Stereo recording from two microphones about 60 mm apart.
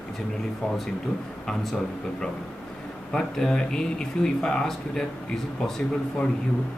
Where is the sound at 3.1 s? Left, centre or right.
Centre.